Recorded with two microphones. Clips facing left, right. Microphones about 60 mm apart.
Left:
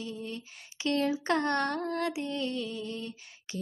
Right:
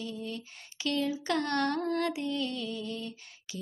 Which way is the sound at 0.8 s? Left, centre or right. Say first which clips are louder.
Left 2 dB; left.